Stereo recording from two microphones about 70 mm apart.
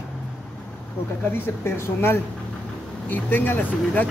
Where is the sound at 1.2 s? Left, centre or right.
Left.